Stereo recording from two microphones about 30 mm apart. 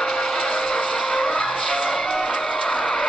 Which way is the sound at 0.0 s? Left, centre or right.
Centre.